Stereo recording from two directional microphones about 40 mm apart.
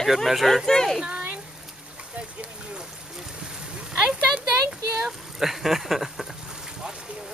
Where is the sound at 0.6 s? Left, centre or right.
Centre.